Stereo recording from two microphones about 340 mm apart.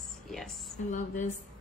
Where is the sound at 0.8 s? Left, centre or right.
Left.